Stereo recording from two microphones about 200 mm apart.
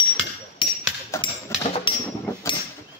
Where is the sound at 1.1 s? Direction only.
15° left (ahead or behind).